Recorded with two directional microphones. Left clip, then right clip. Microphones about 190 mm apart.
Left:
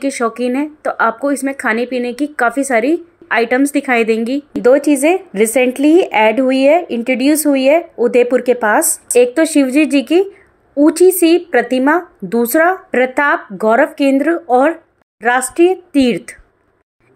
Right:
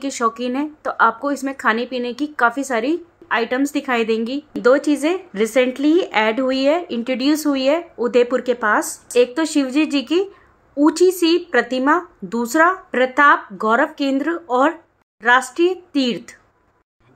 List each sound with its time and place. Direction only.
0.0 s speech: 15° left (ahead or behind)